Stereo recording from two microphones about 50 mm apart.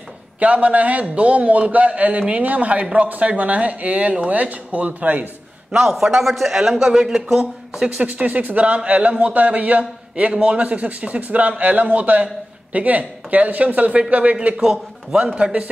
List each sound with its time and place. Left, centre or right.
0.4 s a man's voice: right
5.9 s a man's voice: centre
7.8 s a man's voice: right
14.6 s speech: centre
15.3 s a man's voice: right